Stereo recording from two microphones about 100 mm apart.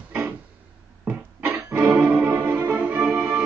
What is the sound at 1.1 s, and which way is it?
Music, 15° right (ahead or behind).